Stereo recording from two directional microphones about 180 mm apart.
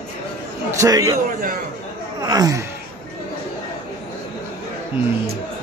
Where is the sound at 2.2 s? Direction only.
20° right (ahead or behind).